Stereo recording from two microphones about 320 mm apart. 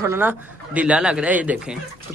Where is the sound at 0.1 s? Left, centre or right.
Centre.